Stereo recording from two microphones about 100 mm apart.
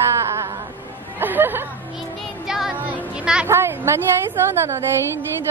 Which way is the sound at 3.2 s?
10° right (ahead or behind).